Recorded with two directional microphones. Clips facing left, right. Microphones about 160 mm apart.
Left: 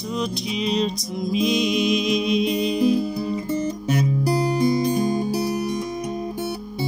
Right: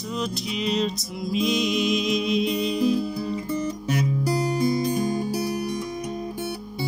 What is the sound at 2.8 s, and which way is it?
Music, 45° left (ahead or behind).